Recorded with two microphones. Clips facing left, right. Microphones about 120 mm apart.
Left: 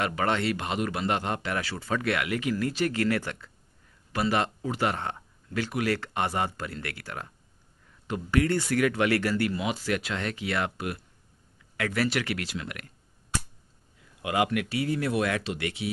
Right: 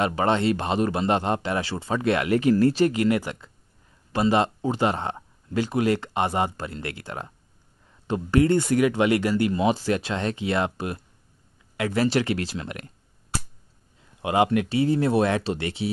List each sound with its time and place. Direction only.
0.0 s speech: 25° right (ahead or behind)
2.9 s speech: 15° right (ahead or behind)
9.6 s speech: 30° right (ahead or behind)